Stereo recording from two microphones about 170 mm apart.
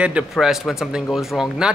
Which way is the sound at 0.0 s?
5° right (ahead or behind).